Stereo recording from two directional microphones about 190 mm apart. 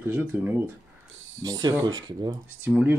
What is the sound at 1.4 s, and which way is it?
Speech, 20° right (ahead or behind).